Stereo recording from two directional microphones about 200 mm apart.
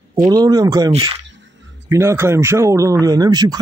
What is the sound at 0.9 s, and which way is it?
Speech, 30° right (ahead or behind).